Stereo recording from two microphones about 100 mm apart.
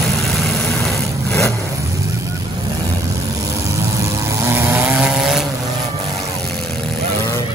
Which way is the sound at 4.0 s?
30° right (ahead or behind).